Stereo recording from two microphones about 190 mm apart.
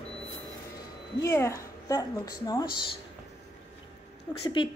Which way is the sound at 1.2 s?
15° left (ahead or behind).